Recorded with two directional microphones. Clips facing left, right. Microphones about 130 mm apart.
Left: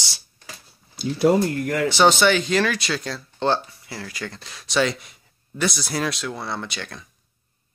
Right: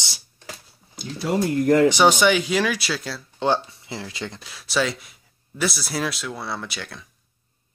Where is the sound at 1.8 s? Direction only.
15° right (ahead or behind).